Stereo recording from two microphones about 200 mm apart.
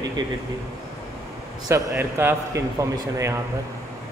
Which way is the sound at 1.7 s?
15° right (ahead or behind).